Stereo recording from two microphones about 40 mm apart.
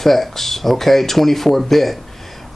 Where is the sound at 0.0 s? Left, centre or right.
Centre.